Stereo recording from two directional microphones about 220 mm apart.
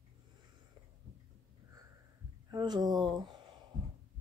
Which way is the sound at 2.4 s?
20° right (ahead or behind).